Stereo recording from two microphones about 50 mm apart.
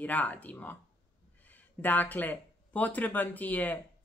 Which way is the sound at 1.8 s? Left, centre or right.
Left.